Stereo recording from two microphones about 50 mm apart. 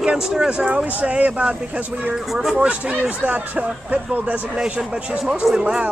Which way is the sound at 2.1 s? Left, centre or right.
Centre.